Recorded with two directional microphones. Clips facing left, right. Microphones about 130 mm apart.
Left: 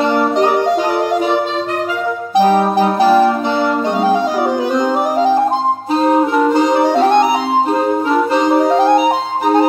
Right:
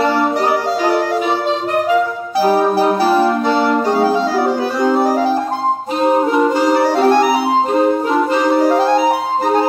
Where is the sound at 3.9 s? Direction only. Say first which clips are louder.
Even; 20° left (ahead or behind).